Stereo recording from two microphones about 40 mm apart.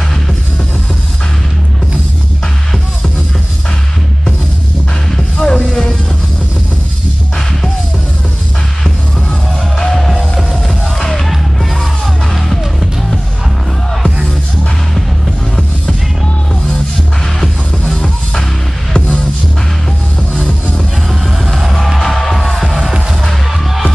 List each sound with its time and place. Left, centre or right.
5.1 s music: centre
8.8 s music: centre
17.4 s music: centre
21.1 s music: centre